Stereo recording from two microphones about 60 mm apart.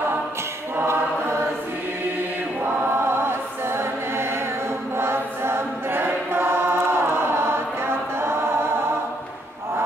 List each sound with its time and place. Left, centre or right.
2.6 s choir: right